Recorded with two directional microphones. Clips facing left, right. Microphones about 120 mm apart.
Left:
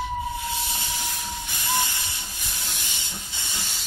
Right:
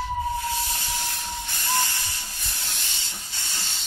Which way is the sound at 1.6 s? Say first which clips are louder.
Even; 15° left (ahead or behind).